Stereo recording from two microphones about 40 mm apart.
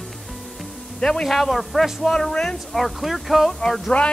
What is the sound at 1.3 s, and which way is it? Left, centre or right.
Speech, centre.